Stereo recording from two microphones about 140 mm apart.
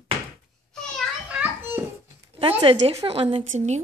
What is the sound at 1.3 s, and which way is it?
Children playing, 10° right (ahead or behind).